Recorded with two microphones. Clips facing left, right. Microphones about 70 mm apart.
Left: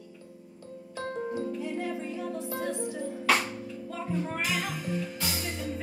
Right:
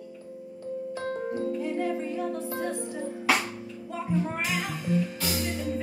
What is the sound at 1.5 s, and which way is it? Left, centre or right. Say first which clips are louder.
Music: right 4 dB; right.